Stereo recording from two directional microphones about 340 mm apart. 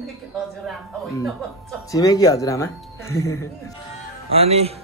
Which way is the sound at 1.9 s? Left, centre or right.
Centre.